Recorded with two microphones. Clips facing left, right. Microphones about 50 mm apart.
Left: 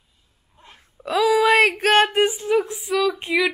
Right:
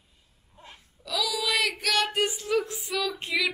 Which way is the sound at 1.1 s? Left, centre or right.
Left.